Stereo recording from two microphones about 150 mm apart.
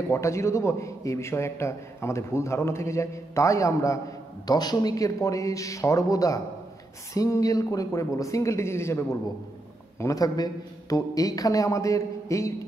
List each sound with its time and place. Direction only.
0.1 s a man's voice: 20° left (ahead or behind)